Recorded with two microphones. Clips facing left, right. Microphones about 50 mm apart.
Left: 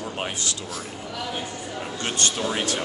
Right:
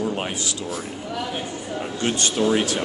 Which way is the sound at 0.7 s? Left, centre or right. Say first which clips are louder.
Right 4 dB; centre.